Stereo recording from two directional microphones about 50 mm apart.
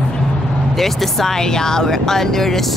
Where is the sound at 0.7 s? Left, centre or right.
Centre.